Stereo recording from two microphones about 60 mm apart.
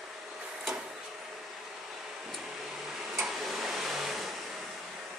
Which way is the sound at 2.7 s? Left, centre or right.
Centre.